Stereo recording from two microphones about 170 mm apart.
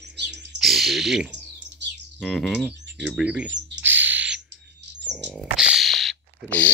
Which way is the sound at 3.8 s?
10° right (ahead or behind).